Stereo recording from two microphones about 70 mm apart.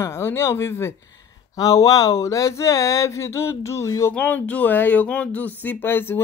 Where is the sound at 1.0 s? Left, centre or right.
Left.